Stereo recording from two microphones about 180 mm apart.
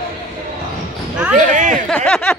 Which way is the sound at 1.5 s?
45° right (ahead or behind).